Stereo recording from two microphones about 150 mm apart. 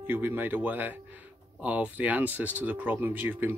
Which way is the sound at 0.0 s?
15° right (ahead or behind).